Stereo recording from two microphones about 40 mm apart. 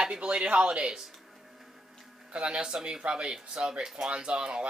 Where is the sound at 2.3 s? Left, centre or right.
Right.